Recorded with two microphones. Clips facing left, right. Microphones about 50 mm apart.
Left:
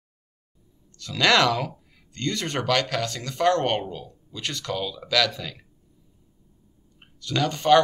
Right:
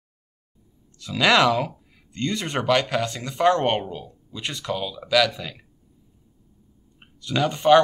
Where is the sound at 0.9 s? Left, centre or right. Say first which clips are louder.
Right 1 dB; centre.